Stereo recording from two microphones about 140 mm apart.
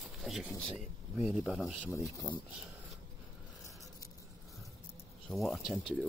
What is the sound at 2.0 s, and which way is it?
Speech, 25° left (ahead or behind).